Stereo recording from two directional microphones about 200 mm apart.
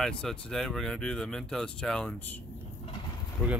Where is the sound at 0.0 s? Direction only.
Centre (ahead or behind).